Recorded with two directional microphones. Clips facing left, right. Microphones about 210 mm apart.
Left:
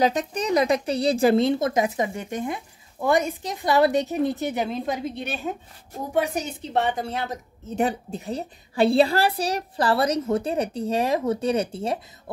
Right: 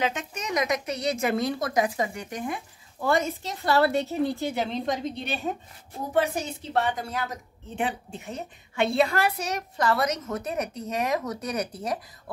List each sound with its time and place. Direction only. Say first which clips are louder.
0.0 s a woman's voice: left 7 dB; 35° left (ahead or behind); by 4.6 s 20° left (ahead or behind)
4.6 s a woman's voice: left 1 dB; 5° left (ahead or behind)
6.1 s a woman's voice: left 1 dB; 15° left (ahead or behind)
7.7 s a woman's voice: left 6 dB; 40° left (ahead or behind)